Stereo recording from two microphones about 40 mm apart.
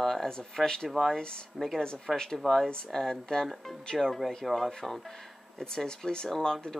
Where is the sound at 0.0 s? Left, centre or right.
Centre.